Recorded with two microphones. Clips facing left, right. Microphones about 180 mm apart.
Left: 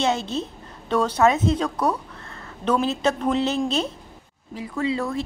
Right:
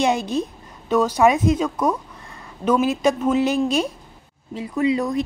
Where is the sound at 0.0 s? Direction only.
15° right (ahead or behind).